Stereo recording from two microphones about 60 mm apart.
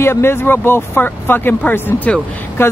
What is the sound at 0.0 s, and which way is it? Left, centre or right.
Speech, left.